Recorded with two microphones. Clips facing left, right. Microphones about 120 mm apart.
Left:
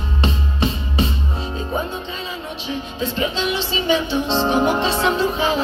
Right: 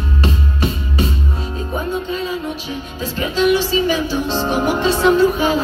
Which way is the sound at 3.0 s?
25° left (ahead or behind).